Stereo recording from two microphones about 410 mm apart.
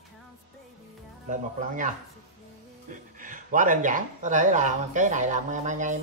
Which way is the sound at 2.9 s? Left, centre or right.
Centre.